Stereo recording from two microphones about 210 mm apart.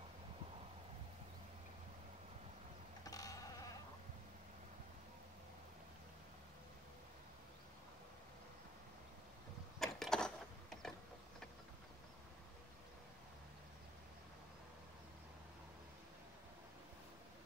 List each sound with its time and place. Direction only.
3.1 s sheep: 15° left (ahead or behind)
9.8 s a sound: centre (ahead or behind)
10.8 s mechanisms: centre (ahead or behind)